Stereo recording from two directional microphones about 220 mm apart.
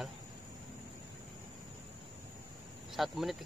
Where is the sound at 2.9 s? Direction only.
Centre (ahead or behind).